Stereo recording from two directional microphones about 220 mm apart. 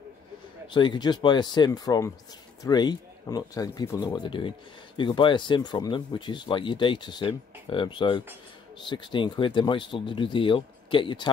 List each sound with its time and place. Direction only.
0.7 s speech: 20° left (ahead or behind)